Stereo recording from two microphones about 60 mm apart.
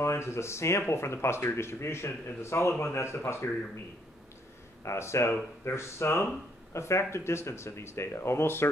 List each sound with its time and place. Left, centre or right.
0.0 s speech: left
4.8 s speech: left